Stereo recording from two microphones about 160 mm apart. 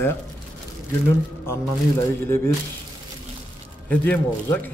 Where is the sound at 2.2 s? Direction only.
15° left (ahead or behind).